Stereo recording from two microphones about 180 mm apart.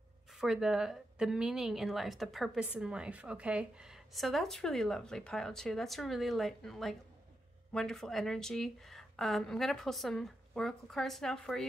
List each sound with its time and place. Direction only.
0.4 s a woman's voice: 5° right (ahead or behind)